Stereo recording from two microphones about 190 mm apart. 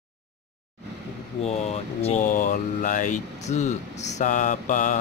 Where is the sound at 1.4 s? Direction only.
35° left (ahead or behind).